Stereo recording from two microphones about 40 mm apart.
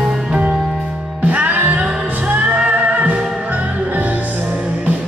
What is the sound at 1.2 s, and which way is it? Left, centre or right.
Music, right.